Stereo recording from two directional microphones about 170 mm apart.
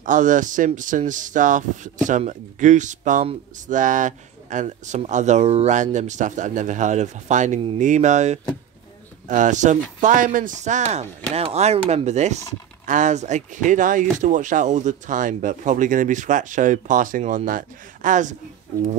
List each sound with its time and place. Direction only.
0.0 s speech: 50° right (ahead or behind)